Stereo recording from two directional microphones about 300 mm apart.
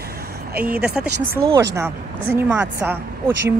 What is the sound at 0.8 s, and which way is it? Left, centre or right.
Speech, right.